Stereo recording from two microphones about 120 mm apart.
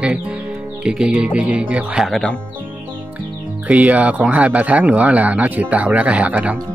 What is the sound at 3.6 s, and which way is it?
Speech, 10° right (ahead or behind).